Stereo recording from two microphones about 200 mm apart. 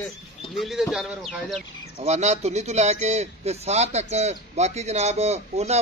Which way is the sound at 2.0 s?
35° right (ahead or behind).